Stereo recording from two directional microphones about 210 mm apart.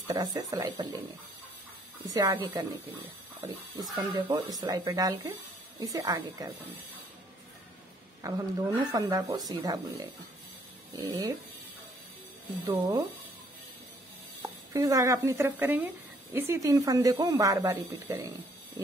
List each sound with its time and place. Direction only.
0.0 s a woman's voice: 15° right (ahead or behind)
2.0 s a woman's voice: 15° right (ahead or behind)
4.1 s a woman's voice: 15° right (ahead or behind)
8.2 s a woman's voice: 15° right (ahead or behind)
12.6 s a woman's voice: 15° right (ahead or behind)
14.4 s a woman's voice: 15° right (ahead or behind)